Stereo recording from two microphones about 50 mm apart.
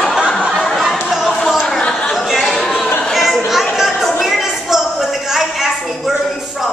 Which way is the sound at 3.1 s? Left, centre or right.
Centre.